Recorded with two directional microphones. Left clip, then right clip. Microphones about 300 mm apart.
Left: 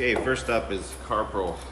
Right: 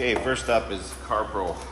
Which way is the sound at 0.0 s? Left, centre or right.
Centre.